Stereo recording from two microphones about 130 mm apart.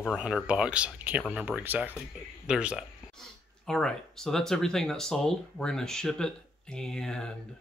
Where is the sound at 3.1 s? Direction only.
5° left (ahead or behind).